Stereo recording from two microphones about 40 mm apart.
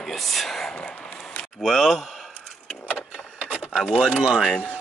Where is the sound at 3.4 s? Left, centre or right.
Right.